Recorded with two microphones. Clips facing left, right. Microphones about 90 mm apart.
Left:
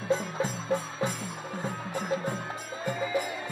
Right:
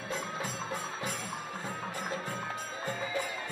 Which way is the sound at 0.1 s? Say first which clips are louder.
Left 8 dB; 25° left (ahead or behind).